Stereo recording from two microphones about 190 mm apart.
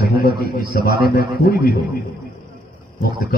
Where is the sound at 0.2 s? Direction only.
50° left (ahead or behind).